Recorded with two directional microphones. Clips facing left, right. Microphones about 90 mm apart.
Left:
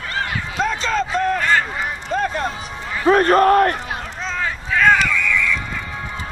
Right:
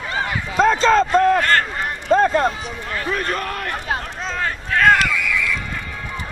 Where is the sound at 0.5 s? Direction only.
40° right (ahead or behind).